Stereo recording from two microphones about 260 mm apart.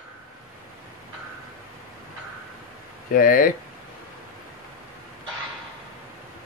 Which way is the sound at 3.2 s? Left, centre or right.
Left.